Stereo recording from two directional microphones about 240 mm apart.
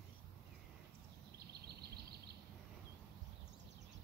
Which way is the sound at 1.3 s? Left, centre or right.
Right.